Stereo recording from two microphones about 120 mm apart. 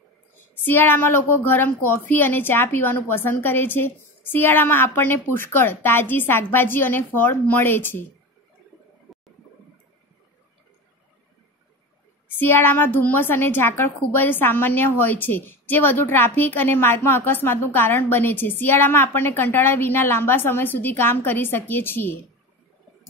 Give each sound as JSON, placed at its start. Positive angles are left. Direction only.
{"t": 0.7, "sound": "a woman's voice", "side_deg": 15}
{"t": 9.1, "sound": "a sound", "side_deg": 0}
{"t": 12.4, "sound": "a woman's voice", "side_deg": 15}